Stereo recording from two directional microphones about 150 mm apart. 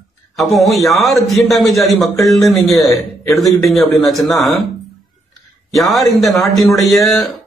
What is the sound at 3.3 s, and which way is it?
A man's voice, centre (ahead or behind).